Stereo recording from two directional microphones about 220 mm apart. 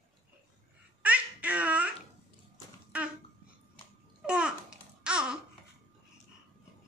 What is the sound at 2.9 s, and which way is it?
Babbling, 5° right (ahead or behind).